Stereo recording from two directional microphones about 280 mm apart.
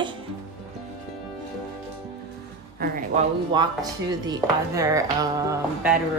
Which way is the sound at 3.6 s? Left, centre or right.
Centre.